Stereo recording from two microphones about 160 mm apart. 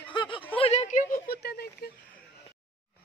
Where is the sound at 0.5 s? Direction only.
40° left (ahead or behind); by 1.6 s 80° left.